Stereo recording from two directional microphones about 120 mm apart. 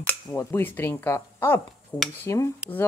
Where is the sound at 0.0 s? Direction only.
20° left (ahead or behind).